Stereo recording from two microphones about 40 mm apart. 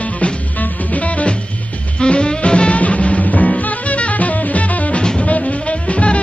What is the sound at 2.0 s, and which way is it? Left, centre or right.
Music, left.